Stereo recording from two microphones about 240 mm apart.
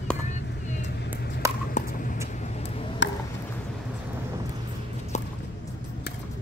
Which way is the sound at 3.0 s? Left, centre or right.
Left.